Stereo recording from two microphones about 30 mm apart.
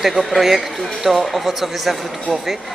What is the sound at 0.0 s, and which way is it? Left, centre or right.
Speech, centre.